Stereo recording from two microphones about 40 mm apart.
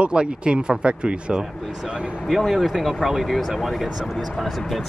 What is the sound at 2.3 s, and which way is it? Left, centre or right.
Speech, centre.